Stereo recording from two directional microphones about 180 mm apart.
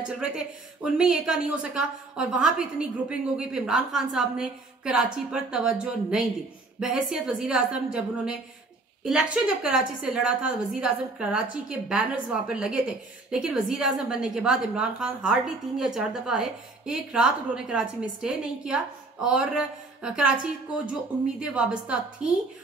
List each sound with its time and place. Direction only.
0.9 s a woman's voice: 5° right (ahead or behind)